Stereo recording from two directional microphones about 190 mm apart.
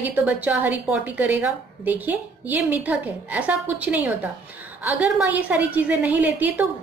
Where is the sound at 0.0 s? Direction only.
10° right (ahead or behind).